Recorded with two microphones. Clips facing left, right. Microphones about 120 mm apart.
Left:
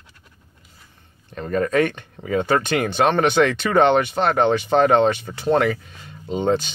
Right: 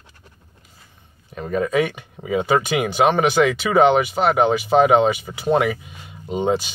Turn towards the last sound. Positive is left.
turn(degrees=-10)  # may be behind; listen again after turning